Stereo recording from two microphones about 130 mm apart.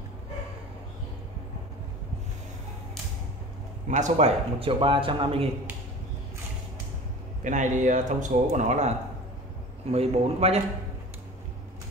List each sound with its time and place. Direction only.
3.8 s speech: 70° right (ahead or behind)
4.6 s speech: 45° right (ahead or behind)
7.4 s speech: 75° right (ahead or behind)
9.8 s speech: 50° right (ahead or behind)